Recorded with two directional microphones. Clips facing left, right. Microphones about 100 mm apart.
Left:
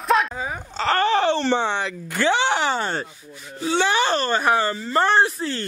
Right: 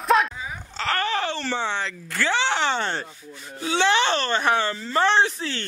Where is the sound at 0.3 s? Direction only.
50° left (ahead or behind).